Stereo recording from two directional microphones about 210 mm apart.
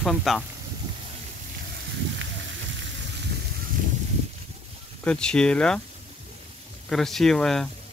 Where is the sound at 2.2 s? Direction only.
60° right (ahead or behind).